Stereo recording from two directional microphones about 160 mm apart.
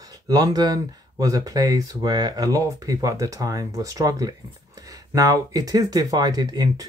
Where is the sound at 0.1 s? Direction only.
25° right (ahead or behind).